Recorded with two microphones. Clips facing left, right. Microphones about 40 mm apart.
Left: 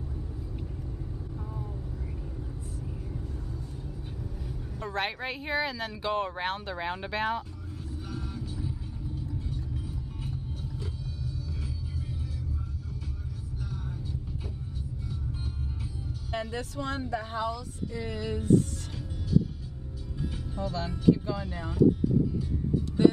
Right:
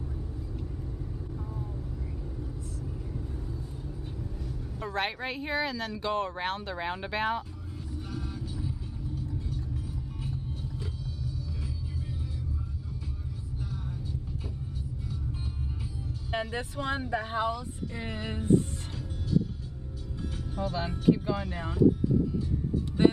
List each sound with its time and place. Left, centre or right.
4.7 s speech: centre
8.1 s vehicle: centre
10.2 s music: centre
16.3 s speech: right
20.6 s speech: centre
23.0 s music: right